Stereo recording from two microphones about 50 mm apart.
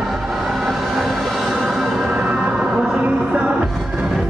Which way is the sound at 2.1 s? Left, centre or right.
Centre.